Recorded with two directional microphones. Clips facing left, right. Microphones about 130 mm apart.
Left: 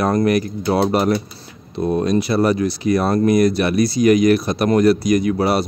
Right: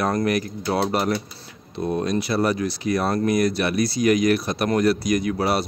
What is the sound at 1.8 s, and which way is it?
Speech, 55° left (ahead or behind).